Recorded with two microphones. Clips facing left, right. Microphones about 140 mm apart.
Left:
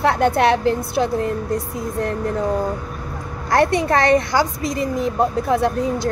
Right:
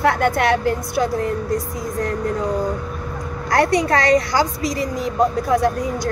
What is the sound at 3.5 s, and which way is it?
A woman's voice, 25° left (ahead or behind).